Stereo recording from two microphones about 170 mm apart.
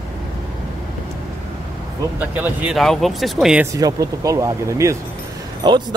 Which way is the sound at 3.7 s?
20° right (ahead or behind).